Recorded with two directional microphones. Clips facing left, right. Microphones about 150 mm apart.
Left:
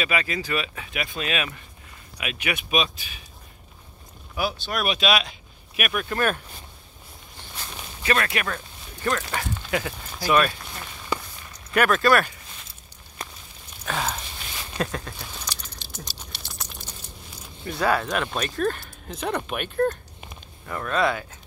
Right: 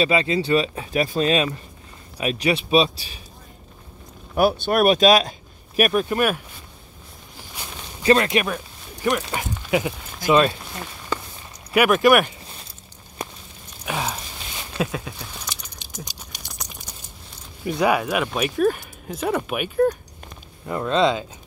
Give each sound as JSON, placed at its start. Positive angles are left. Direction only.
{"t": 0.0, "sound": "speech", "side_deg": -30}
{"t": 4.4, "sound": "speech", "side_deg": -55}
{"t": 6.0, "sound": "speech", "side_deg": -15}
{"t": 8.0, "sound": "speech", "side_deg": -25}
{"t": 11.7, "sound": "speech", "side_deg": -15}
{"t": 13.8, "sound": "a sound", "side_deg": -10}
{"t": 14.8, "sound": "keys jangling", "side_deg": -5}
{"t": 16.3, "sound": "typing", "side_deg": -15}
{"t": 16.9, "sound": "a sound", "side_deg": -10}
{"t": 17.6, "sound": "speech", "side_deg": -15}
{"t": 20.6, "sound": "speech", "side_deg": -20}